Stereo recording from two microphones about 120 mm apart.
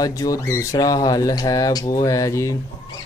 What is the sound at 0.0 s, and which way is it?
Speech, 30° left (ahead or behind).